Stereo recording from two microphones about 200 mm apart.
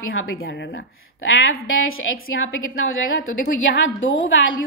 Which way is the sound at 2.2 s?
80° left.